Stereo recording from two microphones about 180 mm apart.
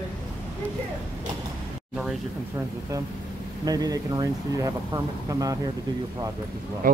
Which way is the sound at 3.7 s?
20° right (ahead or behind).